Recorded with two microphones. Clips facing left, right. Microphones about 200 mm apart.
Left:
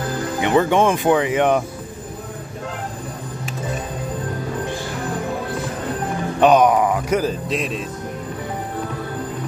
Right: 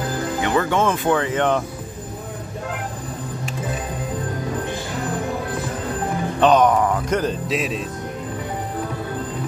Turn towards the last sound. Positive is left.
turn(degrees=0)  # may be behind; listen again after turning